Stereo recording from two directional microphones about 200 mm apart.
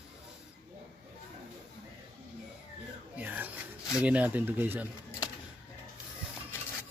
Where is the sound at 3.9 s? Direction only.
5° right (ahead or behind).